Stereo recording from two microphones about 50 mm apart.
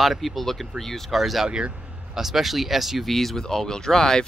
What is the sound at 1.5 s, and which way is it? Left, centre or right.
Speech, centre.